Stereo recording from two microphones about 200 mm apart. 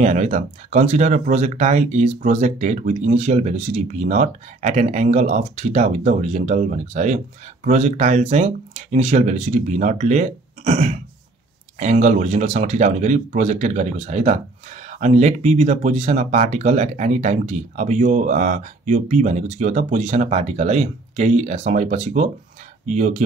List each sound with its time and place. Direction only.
0.0 s speech: 35° right (ahead or behind)